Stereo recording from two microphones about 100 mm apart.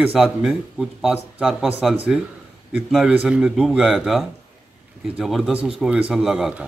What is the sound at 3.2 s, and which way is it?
A man's voice, 10° right (ahead or behind).